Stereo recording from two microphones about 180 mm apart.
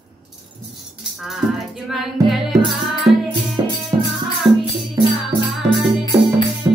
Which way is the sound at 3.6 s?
20° right (ahead or behind).